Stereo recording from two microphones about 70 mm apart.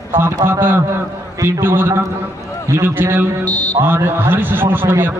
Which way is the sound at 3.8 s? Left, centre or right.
Right.